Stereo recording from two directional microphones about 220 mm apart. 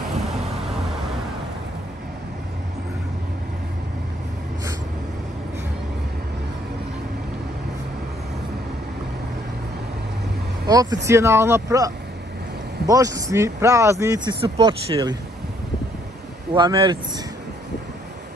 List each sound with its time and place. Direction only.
10.7 s speech: 15° right (ahead or behind)
16.5 s speech: 20° right (ahead or behind)